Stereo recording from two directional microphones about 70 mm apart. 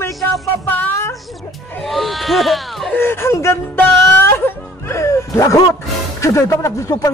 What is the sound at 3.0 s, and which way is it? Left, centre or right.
Speech, left.